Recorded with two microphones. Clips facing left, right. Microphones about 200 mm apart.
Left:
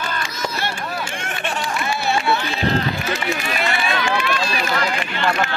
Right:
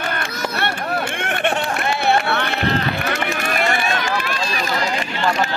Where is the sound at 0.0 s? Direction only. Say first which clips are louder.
Right 2 dB; 60° right (ahead or behind); by 4.6 s 40° right (ahead or behind).